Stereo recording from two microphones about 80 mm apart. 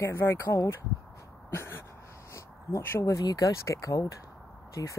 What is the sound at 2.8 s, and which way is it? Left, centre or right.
Speech, left.